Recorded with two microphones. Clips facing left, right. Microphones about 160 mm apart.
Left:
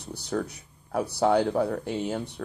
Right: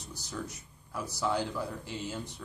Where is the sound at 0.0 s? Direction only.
60° left (ahead or behind).